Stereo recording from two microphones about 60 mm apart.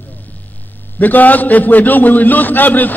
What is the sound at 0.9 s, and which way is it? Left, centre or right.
A man's voice, left.